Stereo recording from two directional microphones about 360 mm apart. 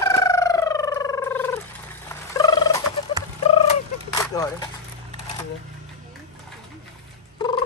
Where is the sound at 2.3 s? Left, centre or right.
Centre.